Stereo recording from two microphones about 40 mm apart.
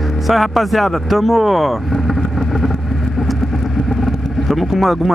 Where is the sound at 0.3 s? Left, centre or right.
Centre.